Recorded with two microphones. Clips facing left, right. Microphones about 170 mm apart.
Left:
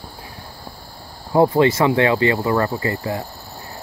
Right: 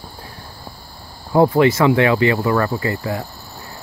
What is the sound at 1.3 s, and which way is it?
Speech, 25° left (ahead or behind).